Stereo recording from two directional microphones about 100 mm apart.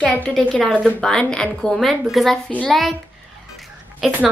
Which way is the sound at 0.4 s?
10° left (ahead or behind).